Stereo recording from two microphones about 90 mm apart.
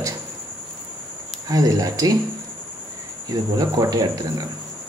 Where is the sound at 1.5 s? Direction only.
40° right (ahead or behind).